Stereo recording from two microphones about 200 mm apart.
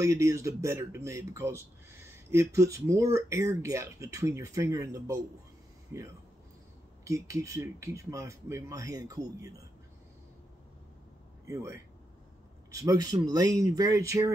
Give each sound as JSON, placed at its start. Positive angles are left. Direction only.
{"t": 0.0, "sound": "speech", "side_deg": -15}
{"t": 7.1, "sound": "speech", "side_deg": -15}
{"t": 11.4, "sound": "speech", "side_deg": -15}